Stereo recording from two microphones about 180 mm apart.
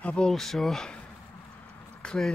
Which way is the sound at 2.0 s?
5° left (ahead or behind).